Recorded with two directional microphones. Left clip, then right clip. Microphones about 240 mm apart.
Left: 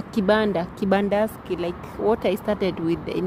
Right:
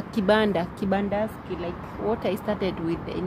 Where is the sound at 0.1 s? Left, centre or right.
Centre.